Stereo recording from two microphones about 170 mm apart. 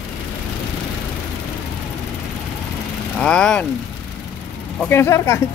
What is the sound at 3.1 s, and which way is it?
Speech, 5° left (ahead or behind).